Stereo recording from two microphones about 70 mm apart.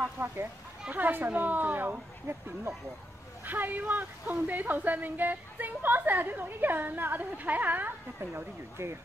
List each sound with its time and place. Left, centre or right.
0.2 s speech: right
0.8 s speech: right